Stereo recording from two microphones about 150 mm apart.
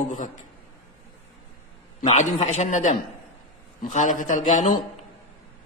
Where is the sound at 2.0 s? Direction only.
55° left (ahead or behind).